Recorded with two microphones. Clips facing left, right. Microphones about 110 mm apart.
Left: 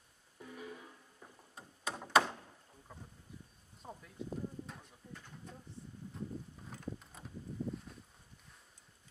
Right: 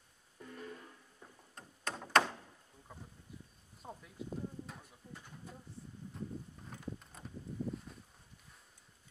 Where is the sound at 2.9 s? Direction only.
Centre (ahead or behind).